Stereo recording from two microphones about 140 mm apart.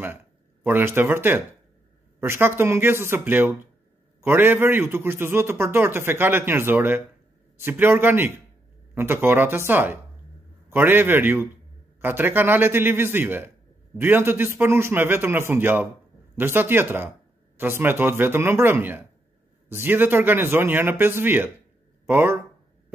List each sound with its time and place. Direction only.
0.7 s a man's voice: 15° right (ahead or behind)